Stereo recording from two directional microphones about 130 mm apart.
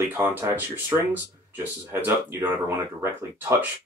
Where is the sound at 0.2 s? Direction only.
15° right (ahead or behind).